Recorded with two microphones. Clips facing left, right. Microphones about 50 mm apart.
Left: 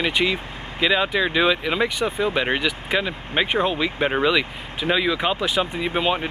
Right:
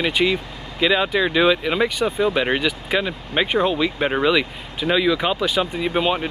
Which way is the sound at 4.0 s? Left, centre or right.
Centre.